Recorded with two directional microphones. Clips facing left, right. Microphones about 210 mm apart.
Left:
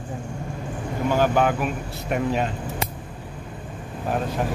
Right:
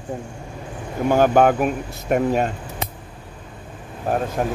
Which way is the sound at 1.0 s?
50° right (ahead or behind).